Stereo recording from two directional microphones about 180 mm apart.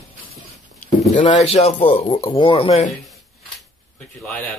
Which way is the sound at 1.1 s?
40° left (ahead or behind).